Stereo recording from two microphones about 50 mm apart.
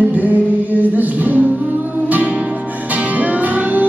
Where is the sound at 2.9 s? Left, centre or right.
Right.